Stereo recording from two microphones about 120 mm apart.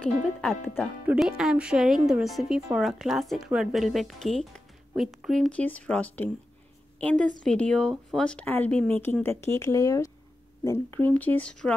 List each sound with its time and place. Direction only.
0.0 s speech: 10° left (ahead or behind)
1.0 s speech: 5° right (ahead or behind); by 11.1 s 25° left (ahead or behind)
11.1 s speech: 15° left (ahead or behind)